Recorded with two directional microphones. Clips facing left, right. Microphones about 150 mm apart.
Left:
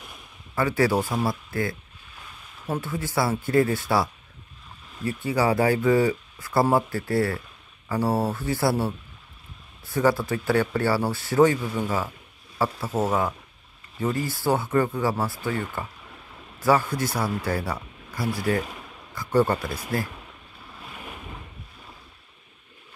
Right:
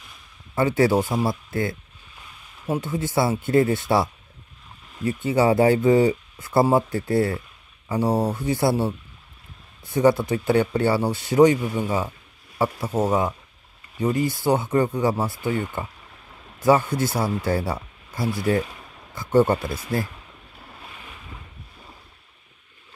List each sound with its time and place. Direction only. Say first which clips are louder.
0.6 s speech: right 3 dB; 25° right (ahead or behind)
2.8 s speech: right 3 dB; 20° right (ahead or behind)
9.8 s speech: right 4 dB; 20° right (ahead or behind)